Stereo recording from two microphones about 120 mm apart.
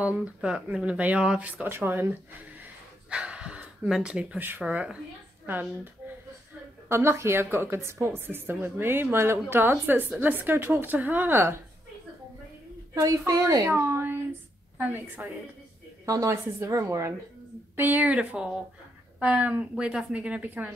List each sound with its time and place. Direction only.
0.0 s a woman's voice: 10° right (ahead or behind)
2.6 s a sound: 10° right (ahead or behind)
5.5 s a woman's voice: 15° right (ahead or behind)
6.9 s a woman's voice: 20° right (ahead or behind)
13.3 s a woman's voice: 30° right (ahead or behind)
13.7 s a woman's voice: 20° right (ahead or behind)
16.1 s a woman's voice: 25° right (ahead or behind)